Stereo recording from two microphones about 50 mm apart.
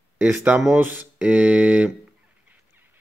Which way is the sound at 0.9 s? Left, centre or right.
Right.